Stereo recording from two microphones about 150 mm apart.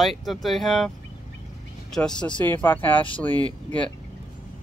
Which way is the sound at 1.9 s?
5° left (ahead or behind).